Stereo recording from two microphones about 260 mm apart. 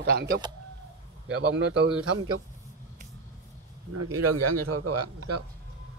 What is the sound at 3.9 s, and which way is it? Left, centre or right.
A man's voice, right.